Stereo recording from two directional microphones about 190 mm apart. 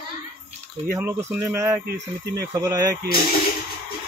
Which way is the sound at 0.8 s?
10° right (ahead or behind).